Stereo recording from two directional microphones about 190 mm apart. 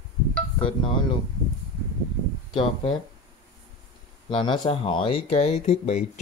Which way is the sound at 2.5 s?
25° left (ahead or behind).